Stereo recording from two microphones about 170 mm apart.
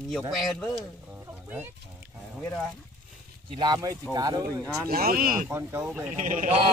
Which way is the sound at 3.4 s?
30° right (ahead or behind).